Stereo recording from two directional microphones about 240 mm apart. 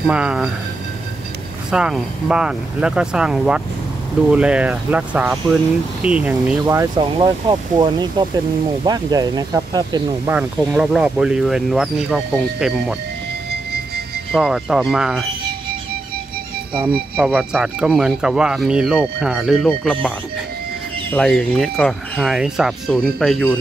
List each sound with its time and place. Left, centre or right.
0.0 s speech: centre
1.7 s speech: centre
10.3 s speech: centre
14.3 s speech: centre
17.2 s speech: centre
21.1 s speech: centre